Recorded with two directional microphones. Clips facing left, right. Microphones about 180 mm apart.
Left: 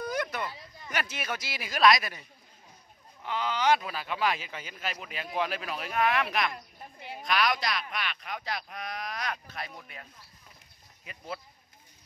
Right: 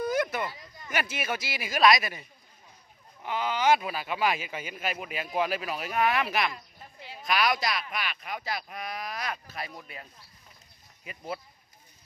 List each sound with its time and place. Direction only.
0.0 s speech: 5° right (ahead or behind)
3.3 s speech: 10° right (ahead or behind)
6.5 s a sound: 55° left (ahead or behind)
7.2 s speech: 5° right (ahead or behind)
11.1 s speech: 10° right (ahead or behind)